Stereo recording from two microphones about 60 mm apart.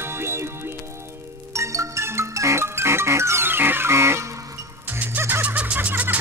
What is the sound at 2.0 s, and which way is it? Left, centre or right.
Music, right.